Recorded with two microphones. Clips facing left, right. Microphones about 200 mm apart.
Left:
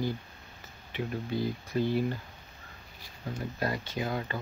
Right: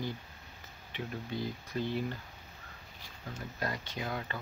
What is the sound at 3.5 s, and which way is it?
Speech, 30° left (ahead or behind).